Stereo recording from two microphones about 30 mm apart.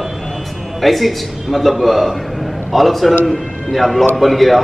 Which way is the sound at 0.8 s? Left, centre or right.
Centre.